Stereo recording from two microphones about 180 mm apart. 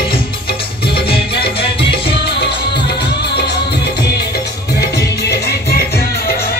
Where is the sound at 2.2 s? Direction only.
65° left (ahead or behind).